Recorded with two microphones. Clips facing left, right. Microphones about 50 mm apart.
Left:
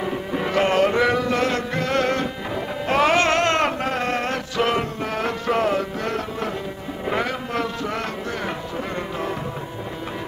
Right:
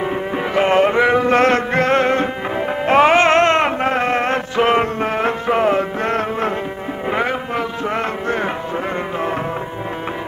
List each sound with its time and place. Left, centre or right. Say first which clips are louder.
0.0 s music: right 4 dB; right
1.2 s music: right 8 dB; right
7.1 s music: right 4 dB; right